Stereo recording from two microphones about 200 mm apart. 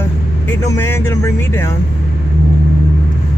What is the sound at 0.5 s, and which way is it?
Speech, 15° left (ahead or behind).